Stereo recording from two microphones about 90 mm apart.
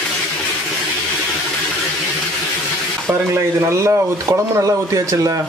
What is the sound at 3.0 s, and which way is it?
Speech, 30° right (ahead or behind).